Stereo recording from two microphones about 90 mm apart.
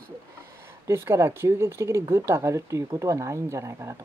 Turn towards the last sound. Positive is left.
turn(degrees=-35)  # may be behind; listen again after turning